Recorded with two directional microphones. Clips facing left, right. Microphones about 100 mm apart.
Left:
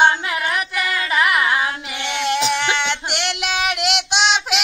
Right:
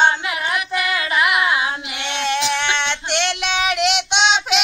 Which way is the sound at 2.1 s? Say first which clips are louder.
Left 1 dB; 10° left (ahead or behind).